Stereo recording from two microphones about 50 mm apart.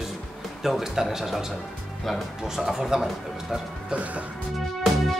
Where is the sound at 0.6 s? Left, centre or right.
Centre.